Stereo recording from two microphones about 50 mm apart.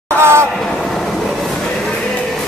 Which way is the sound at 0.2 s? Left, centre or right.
Right.